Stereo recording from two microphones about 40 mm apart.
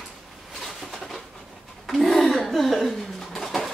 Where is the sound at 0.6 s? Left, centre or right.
Centre.